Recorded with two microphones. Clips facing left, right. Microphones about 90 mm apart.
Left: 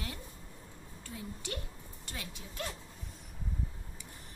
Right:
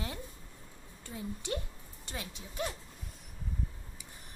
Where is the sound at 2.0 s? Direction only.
20° right (ahead or behind).